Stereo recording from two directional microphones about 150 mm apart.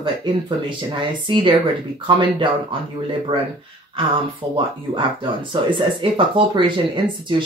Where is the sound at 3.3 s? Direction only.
40° right (ahead or behind).